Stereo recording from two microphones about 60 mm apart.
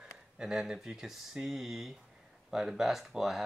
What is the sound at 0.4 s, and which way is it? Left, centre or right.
Speech, centre.